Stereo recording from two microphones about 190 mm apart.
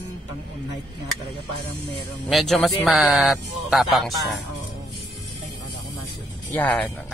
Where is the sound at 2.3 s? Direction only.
Centre (ahead or behind).